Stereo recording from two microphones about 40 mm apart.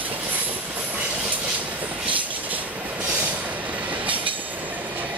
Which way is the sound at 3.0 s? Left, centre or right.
Right.